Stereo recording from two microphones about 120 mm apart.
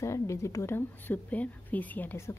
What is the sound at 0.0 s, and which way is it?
Speech, 25° left (ahead or behind).